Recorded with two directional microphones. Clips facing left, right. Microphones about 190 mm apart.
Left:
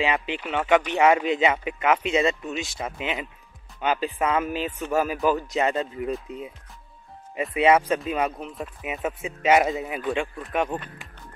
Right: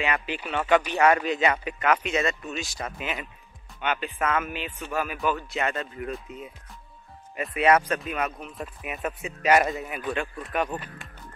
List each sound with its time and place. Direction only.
0.0 s speech: 25° left (ahead or behind)
3.8 s speech: 30° left (ahead or behind)
4.2 s speech: 20° left (ahead or behind)
4.5 s speech: 35° left (ahead or behind)
5.7 s speech: 20° left (ahead or behind)
7.5 s speech: 25° left (ahead or behind)